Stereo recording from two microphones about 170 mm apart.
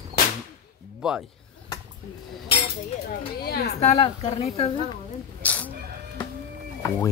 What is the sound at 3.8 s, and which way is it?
Speech, 40° left (ahead or behind).